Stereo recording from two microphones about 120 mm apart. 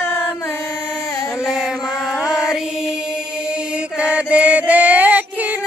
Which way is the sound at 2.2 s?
5° right (ahead or behind).